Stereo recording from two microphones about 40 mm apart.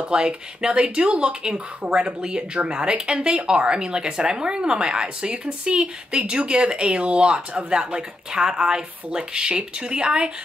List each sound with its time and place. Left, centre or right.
0.0 s speech: right